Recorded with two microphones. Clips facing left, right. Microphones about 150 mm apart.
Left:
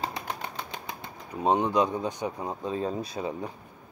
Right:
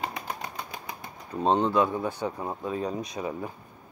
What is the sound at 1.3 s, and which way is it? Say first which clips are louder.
Speech: right 1 dB; 15° left (ahead or behind).